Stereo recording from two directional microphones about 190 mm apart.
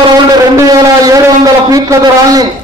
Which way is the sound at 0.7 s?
20° right (ahead or behind).